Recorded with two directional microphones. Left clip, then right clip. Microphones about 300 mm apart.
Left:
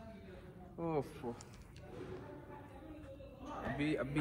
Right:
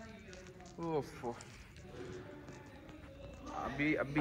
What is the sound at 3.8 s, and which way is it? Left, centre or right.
Speech, centre.